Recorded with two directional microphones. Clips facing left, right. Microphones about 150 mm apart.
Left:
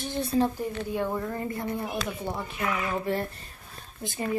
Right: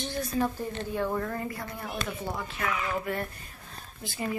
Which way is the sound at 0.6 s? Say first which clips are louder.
Left 2 dB; 10° left (ahead or behind).